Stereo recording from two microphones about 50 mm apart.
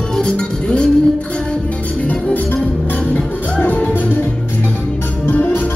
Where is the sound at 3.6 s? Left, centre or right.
Left.